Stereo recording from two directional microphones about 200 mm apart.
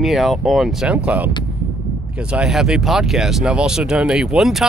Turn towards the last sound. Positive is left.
turn(degrees=0)  # may be behind; listen again after turning